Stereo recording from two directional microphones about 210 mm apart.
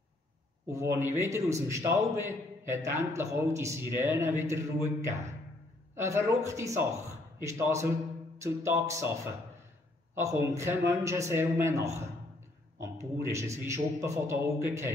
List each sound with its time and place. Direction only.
0.7 s a man's voice: 10° right (ahead or behind)